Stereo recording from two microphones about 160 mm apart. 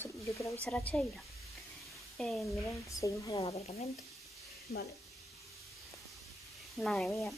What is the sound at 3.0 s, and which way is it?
Speech, 20° left (ahead or behind).